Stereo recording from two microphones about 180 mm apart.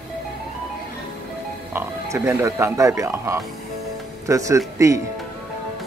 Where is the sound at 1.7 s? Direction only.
15° right (ahead or behind).